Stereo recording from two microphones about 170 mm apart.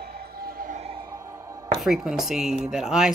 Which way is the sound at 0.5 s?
55° right (ahead or behind).